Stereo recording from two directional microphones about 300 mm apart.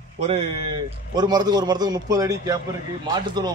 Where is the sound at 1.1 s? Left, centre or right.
Centre.